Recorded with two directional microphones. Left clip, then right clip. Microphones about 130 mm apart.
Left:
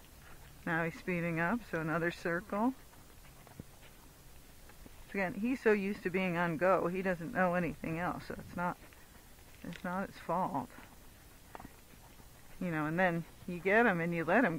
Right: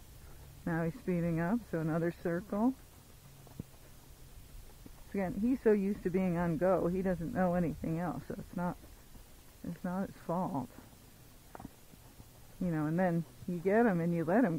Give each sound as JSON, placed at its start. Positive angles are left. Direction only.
{"t": 0.7, "sound": "speech", "side_deg": 25}
{"t": 5.1, "sound": "speech", "side_deg": 25}
{"t": 12.6, "sound": "speech", "side_deg": 30}